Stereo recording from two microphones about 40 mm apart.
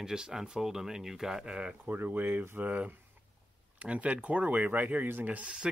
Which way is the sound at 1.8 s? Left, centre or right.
Right.